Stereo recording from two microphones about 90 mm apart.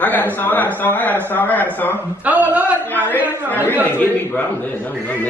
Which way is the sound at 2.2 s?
15° right (ahead or behind).